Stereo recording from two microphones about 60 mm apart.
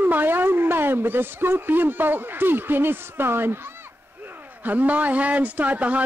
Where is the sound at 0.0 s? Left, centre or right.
Right.